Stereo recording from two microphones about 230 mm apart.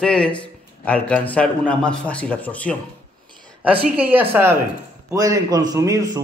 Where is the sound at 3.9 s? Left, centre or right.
Centre.